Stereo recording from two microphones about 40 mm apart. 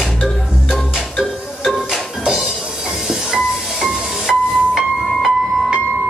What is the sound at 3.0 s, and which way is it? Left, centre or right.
Music, centre.